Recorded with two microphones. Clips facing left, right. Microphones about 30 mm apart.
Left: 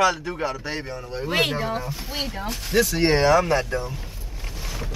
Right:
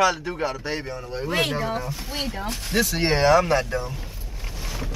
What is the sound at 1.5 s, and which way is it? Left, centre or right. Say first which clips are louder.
Speech: even; centre.